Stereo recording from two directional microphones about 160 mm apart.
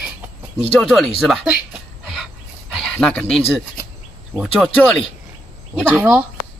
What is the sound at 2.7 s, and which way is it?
Speech, 5° left (ahead or behind).